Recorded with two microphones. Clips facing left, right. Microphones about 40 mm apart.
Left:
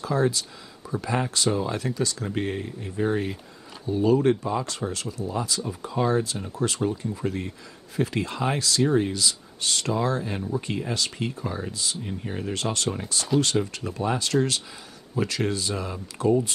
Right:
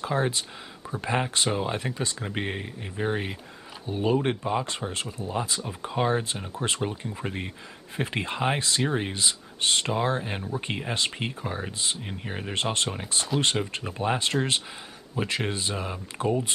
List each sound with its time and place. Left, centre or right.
0.0 s speech: right